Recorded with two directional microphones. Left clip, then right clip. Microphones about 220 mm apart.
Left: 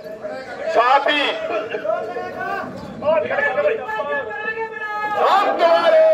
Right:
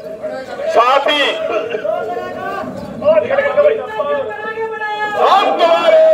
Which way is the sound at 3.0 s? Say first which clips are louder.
Right 6 dB; 50° right (ahead or behind).